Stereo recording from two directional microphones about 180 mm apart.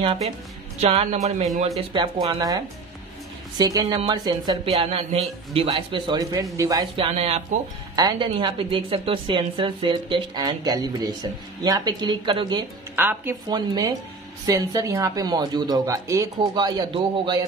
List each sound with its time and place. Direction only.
0.7 s speech: 35° right (ahead or behind)
1.8 s a woman's voice: 20° right (ahead or behind)
4.7 s a woman's voice: 35° right (ahead or behind)
7.2 s speech: 35° right (ahead or behind)
7.9 s a woman's voice: 20° right (ahead or behind)
12.9 s speech: 10° right (ahead or behind)
13.5 s a woman's voice: 20° right (ahead or behind)